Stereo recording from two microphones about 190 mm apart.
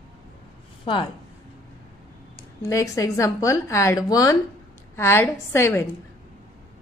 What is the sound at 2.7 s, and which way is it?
A woman's voice, 15° left (ahead or behind).